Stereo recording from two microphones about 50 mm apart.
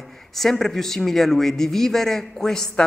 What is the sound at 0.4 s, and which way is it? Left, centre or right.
Speech, centre.